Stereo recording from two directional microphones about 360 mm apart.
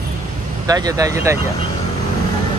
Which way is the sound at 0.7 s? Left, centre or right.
Centre.